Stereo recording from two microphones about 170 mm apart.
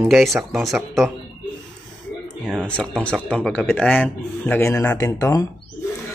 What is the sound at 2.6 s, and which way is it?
Speech, 5° left (ahead or behind).